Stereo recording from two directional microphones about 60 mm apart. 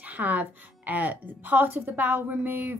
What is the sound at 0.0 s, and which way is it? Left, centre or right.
A woman's voice, right.